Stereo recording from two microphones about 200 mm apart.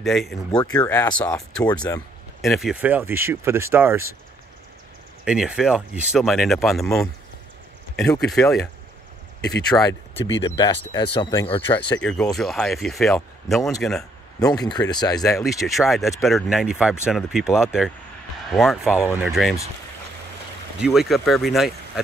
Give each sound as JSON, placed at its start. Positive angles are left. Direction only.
{"t": 0.0, "sound": "speech", "side_deg": 0}
{"t": 5.2, "sound": "speech", "side_deg": -5}
{"t": 9.7, "sound": "speech", "side_deg": 20}
{"t": 12.0, "sound": "speech", "side_deg": 5}
{"t": 14.4, "sound": "speech", "side_deg": 20}
{"t": 15.3, "sound": "speech", "side_deg": 0}
{"t": 20.8, "sound": "speech", "side_deg": 0}